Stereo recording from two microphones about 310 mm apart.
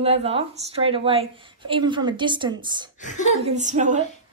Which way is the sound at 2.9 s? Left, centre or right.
Left.